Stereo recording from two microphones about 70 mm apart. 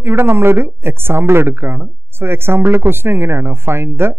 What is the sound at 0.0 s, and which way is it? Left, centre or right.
A woman's voice, right.